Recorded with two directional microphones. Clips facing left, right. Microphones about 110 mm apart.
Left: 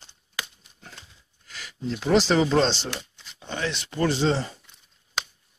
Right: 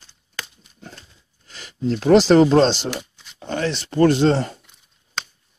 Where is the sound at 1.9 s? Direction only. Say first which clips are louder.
Right 8 dB; 50° right (ahead or behind).